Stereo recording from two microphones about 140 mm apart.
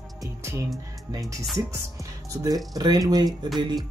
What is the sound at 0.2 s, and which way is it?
Music, 20° right (ahead or behind).